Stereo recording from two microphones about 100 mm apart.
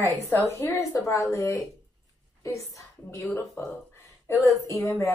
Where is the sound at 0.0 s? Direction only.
25° left (ahead or behind).